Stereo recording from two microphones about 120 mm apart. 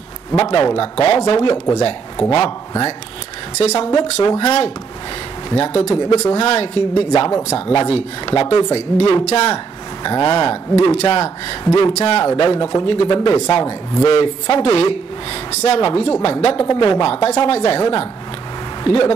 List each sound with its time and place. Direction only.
0.4 s a woman's voice: 45° left (ahead or behind)
3.5 s speech: 65° left (ahead or behind)
3.9 s speech: 40° left (ahead or behind)
4.4 s a woman's voice: 60° left (ahead or behind)
10.0 s a woman's voice: 40° left (ahead or behind); by 12.3 s 60° left (ahead or behind)
12.4 s a woman's voice: 45° left (ahead or behind)
16.6 s a woman's voice: 40° left (ahead or behind)